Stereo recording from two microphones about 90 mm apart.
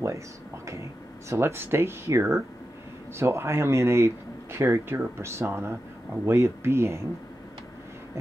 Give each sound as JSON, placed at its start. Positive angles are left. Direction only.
{"t": 1.3, "sound": "speech", "side_deg": -25}